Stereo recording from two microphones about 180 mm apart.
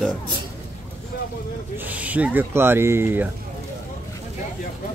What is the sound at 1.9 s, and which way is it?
Speech, 10° right (ahead or behind).